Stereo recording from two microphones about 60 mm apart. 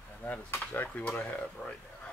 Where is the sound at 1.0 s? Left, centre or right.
Centre.